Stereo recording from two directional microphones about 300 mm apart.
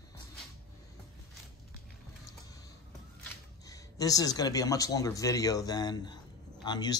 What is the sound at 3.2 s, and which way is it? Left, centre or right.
Speech, centre.